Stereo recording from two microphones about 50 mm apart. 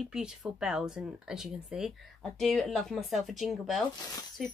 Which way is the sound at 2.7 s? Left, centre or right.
Centre.